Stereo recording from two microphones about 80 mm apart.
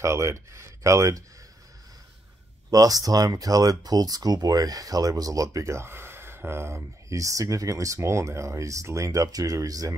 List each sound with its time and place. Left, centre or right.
0.0 s speech: right
2.7 s speech: right